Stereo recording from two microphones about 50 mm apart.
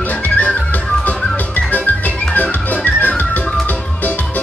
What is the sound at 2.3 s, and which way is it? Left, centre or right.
Music, left.